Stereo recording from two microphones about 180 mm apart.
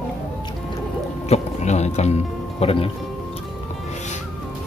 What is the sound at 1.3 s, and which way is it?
Music, 40° left (ahead or behind).